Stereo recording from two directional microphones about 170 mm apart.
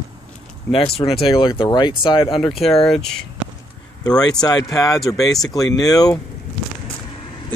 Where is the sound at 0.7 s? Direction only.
35° left (ahead or behind).